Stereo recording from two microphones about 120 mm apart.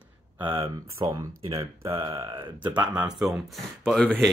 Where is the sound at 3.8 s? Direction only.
5° left (ahead or behind).